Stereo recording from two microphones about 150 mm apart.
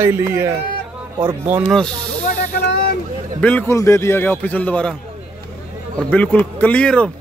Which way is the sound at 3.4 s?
10° left (ahead or behind).